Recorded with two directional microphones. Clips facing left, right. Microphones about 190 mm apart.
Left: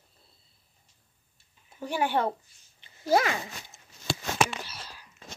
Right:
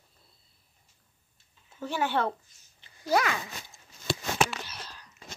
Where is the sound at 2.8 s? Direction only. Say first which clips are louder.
Left 2 dB; 25° left (ahead or behind).